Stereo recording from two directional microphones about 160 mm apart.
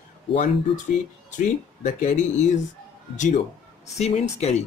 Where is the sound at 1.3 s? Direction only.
50° left (ahead or behind).